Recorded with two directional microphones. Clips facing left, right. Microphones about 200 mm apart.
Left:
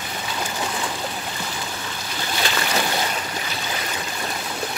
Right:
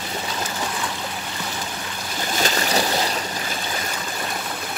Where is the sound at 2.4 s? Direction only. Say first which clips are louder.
Right 2 dB; 40° right (ahead or behind).